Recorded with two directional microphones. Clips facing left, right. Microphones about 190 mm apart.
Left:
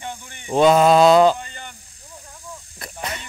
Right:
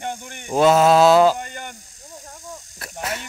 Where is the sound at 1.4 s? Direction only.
50° right (ahead or behind).